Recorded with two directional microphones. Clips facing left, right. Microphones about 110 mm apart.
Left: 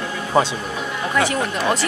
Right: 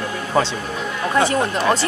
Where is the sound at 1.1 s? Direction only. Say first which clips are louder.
Right 3 dB; 30° right (ahead or behind).